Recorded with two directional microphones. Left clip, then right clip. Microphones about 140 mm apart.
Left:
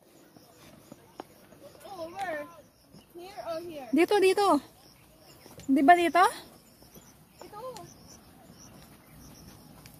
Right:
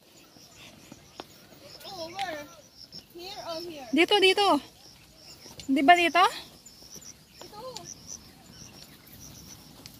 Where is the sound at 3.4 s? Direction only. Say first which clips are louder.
Left 2 dB; 15° left (ahead or behind).